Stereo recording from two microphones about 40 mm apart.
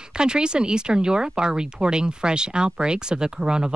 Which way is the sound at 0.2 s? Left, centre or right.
Right.